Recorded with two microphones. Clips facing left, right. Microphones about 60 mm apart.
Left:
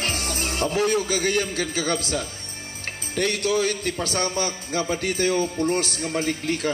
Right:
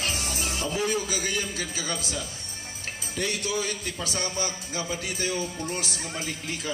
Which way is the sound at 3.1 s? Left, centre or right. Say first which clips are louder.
Left 7 dB; left.